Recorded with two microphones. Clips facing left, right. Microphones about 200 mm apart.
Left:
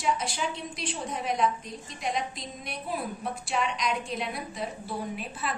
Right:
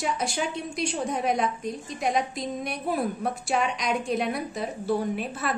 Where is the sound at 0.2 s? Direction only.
45° right (ahead or behind).